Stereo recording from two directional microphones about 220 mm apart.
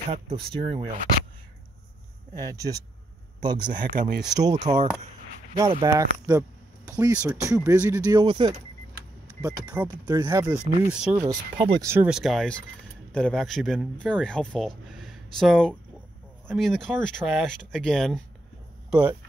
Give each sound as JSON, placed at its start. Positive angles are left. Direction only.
{"t": 0.1, "sound": "speech", "side_deg": -25}
{"t": 2.3, "sound": "speech", "side_deg": -15}
{"t": 3.8, "sound": "speech", "side_deg": -35}
{"t": 4.4, "sound": "speech", "side_deg": -20}
{"t": 14.9, "sound": "a sound", "side_deg": 0}
{"t": 16.4, "sound": "speech", "side_deg": 0}